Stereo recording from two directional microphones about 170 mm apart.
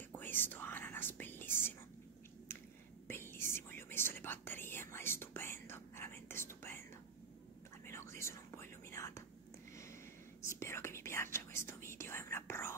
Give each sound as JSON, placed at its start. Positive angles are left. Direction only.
{"t": 0.1, "sound": "whispering", "side_deg": 10}
{"t": 3.1, "sound": "whispering", "side_deg": 15}
{"t": 7.8, "sound": "whispering", "side_deg": 15}
{"t": 10.4, "sound": "whispering", "side_deg": 15}